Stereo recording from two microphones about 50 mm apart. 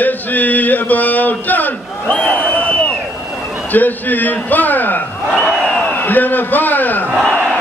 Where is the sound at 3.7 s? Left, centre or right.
Left.